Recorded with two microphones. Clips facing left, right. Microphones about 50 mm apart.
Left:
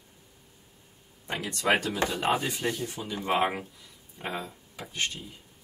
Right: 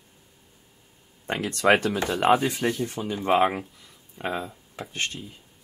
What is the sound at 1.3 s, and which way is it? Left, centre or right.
Speech, right.